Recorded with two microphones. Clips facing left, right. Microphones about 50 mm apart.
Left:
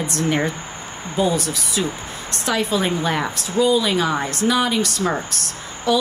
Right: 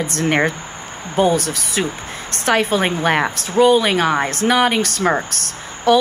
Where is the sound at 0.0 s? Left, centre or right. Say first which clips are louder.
Right 3 dB; right.